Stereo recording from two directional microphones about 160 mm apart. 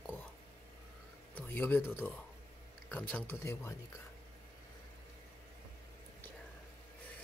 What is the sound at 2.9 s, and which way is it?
Speech, 10° left (ahead or behind).